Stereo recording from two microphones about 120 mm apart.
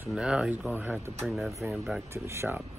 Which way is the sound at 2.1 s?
20° right (ahead or behind).